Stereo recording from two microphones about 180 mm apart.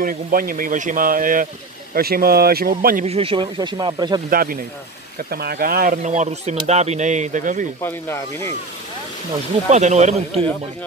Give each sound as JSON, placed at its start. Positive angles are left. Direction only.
{"t": 0.0, "sound": "speech", "side_deg": -50}
{"t": 3.1, "sound": "speech", "side_deg": -30}
{"t": 4.3, "sound": "speech", "side_deg": -50}
{"t": 9.7, "sound": "speech", "side_deg": -40}